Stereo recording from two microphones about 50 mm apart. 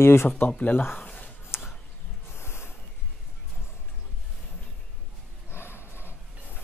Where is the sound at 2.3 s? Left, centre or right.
Left.